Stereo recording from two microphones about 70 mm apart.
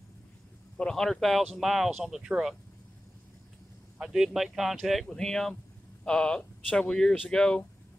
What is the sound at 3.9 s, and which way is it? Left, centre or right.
Speech, centre.